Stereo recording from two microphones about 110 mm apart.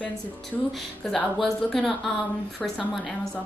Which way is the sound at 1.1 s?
5° left (ahead or behind).